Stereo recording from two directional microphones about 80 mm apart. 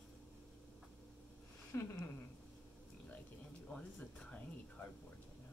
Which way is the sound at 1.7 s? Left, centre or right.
Left.